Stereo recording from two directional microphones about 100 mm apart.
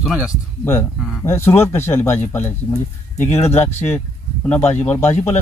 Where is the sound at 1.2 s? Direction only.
25° left (ahead or behind).